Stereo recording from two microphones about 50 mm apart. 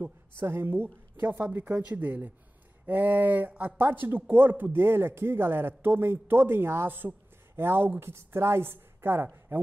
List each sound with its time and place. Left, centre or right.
0.4 s a woman's voice: right